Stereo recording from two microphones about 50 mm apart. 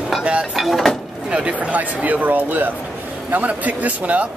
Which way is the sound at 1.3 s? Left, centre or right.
Right.